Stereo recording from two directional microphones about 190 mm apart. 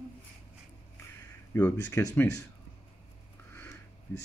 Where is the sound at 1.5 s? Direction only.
10° left (ahead or behind).